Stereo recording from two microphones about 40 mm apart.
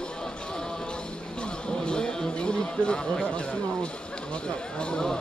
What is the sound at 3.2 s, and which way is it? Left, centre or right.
Speech, left.